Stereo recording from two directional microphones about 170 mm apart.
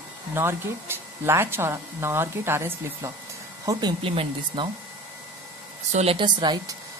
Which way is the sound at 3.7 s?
25° right (ahead or behind).